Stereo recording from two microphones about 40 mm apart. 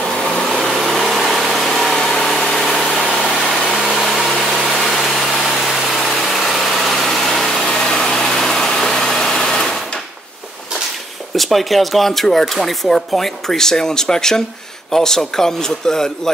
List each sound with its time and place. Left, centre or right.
0.0 s vehicle: left
0.7 s vehicle: centre
2.0 s engine: centre
3.4 s vehicle: centre
3.9 s engine: centre
6.1 s vehicle: centre
7.6 s engine: centre
11.3 s speech: centre